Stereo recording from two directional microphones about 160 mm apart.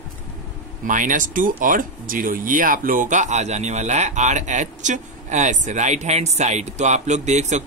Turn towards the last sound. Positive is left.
turn(degrees=-45)  # may be behind; listen again after turning